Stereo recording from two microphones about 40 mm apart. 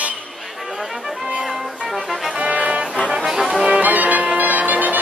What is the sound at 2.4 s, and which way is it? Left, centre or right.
Music, right.